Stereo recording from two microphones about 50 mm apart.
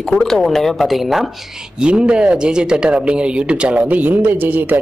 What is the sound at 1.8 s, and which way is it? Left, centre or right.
Speech, centre.